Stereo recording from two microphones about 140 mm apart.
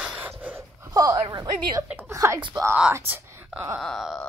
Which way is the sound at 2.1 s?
25° right (ahead or behind).